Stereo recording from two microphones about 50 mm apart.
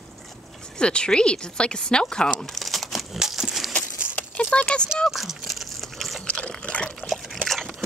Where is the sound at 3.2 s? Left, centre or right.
Centre.